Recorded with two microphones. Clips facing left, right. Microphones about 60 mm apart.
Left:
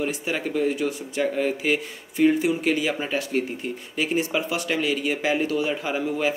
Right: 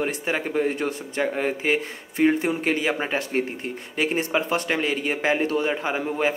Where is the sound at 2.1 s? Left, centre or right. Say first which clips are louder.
Left 1 dB; right.